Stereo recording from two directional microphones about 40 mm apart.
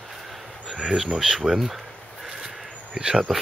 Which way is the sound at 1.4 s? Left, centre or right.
Centre.